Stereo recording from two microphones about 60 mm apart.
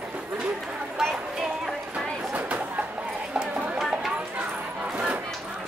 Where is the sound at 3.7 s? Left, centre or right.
Centre.